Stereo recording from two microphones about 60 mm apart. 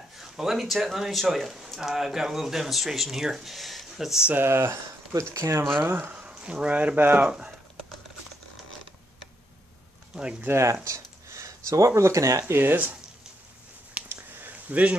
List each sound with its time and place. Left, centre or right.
0.2 s speech: centre
4.5 s speech: right
5.9 s speech: right
6.1 s speech: centre
7.2 s speech: centre
10.1 s speech: centre
10.5 s speech: right
12.5 s speech: right
13.9 s a sound: right